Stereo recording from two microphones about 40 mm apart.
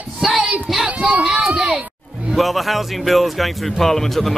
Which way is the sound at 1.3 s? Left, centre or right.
Right.